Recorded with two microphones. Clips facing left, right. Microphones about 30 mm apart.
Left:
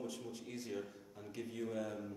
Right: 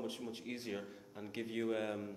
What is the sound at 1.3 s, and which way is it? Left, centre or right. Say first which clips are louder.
Speech: right 4 dB; right.